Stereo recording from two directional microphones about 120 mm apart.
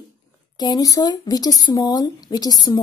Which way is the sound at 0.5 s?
35° left (ahead or behind).